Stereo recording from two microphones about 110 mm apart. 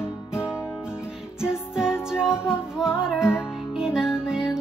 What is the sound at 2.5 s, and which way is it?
Music, 5° right (ahead or behind).